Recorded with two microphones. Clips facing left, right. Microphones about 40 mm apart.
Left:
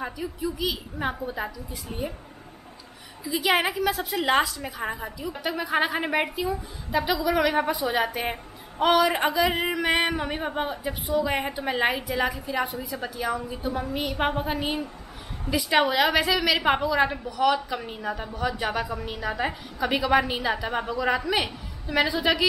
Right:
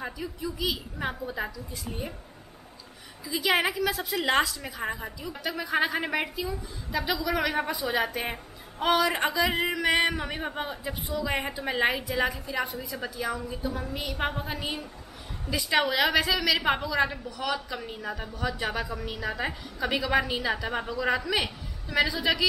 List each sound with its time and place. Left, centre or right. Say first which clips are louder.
0.0 s a woman's voice: left 4 dB; centre
3.3 s a woman's voice: left 2 dB; centre
11.1 s a woman's voice: left 6 dB; left
11.5 s a woman's voice: left 2 dB; centre